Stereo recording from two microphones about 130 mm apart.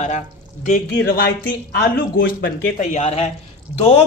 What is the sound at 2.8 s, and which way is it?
Speech, 75° left (ahead or behind).